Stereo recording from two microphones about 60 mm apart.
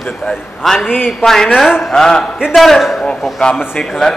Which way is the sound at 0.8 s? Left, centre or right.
Left.